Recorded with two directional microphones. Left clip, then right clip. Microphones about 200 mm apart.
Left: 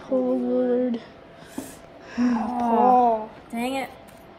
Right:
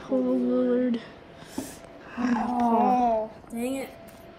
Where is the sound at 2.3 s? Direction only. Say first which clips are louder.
Right 4 dB; 25° left (ahead or behind).